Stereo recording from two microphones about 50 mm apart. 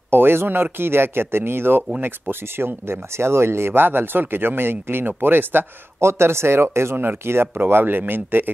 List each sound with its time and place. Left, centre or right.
0.1 s speech: right
5.9 s speech: right